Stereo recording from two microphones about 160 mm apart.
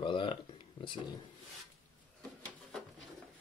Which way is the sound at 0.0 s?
30° left (ahead or behind).